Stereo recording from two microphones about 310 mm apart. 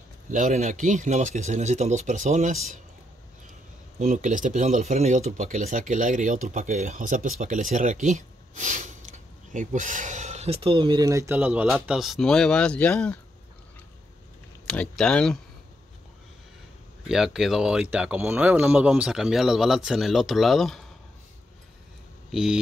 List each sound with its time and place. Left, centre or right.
0.3 s speech: right
4.0 s speech: right; by 13.2 s centre
14.7 s speech: centre
17.1 s speech: centre
22.3 s speech: centre